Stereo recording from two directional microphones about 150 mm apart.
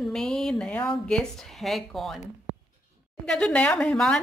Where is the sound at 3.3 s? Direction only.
5° left (ahead or behind).